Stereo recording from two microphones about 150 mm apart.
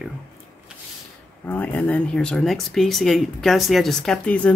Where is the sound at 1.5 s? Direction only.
10° left (ahead or behind).